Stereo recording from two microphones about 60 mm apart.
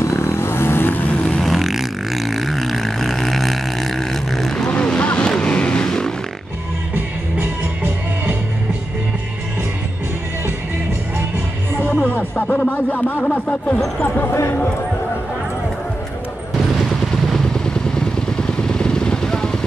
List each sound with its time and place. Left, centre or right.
0.0 s vehicle: left
1.4 s a sound: centre
4.6 s vehicle: left
7.3 s music: right
11.9 s speech: left
17.1 s vehicle: centre